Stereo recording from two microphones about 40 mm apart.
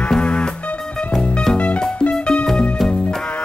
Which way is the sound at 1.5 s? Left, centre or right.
Left.